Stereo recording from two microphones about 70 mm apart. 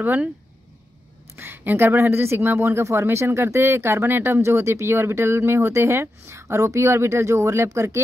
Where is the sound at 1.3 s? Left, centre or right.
Right.